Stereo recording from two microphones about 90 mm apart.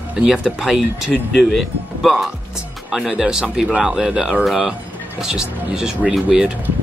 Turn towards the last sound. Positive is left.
turn(degrees=-5)  # may be behind; listen again after turning